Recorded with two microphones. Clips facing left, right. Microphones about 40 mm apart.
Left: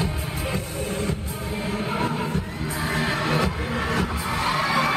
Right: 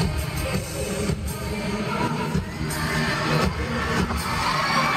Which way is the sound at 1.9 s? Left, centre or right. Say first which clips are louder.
Even; left.